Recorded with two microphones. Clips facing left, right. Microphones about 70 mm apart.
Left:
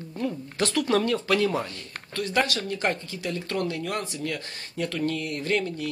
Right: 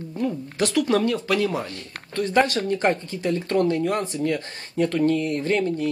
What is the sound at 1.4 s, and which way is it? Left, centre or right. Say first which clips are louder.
Speech: right 1 dB; centre.